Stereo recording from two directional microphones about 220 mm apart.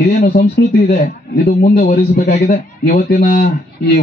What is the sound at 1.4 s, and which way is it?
A man's voice, 40° left (ahead or behind).